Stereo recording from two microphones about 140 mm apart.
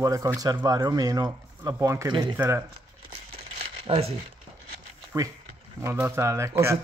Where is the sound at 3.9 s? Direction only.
45° right (ahead or behind).